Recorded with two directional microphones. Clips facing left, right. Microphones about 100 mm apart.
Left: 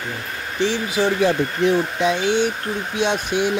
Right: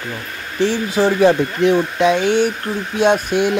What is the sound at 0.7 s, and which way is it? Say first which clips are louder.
Speech: right 4 dB; 35° right (ahead or behind).